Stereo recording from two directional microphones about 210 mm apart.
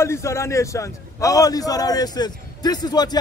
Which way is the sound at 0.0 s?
10° left (ahead or behind).